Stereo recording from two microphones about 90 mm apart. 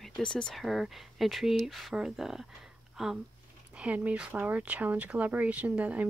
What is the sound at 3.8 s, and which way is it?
Speech, 15° right (ahead or behind).